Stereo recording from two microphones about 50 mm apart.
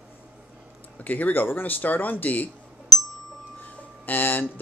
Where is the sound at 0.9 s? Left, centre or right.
Left.